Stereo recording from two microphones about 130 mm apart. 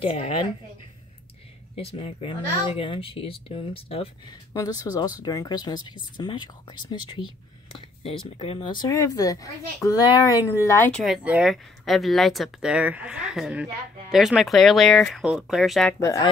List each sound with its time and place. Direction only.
0.0 s speech: 45° left (ahead or behind)
1.8 s speech: 50° left (ahead or behind)
4.3 s speech: 30° left (ahead or behind)
7.7 s speech: 45° left (ahead or behind)
8.6 s speech: 35° left (ahead or behind)
10.8 s speech: 5° left (ahead or behind)
11.2 s speech: 10° right (ahead or behind)
16.0 s speech: 25° left (ahead or behind)